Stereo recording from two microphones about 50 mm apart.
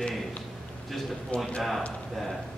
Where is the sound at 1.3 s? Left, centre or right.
Left.